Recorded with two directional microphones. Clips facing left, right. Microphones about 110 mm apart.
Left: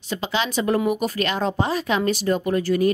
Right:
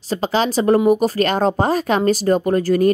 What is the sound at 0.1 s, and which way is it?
Speech, 40° right (ahead or behind).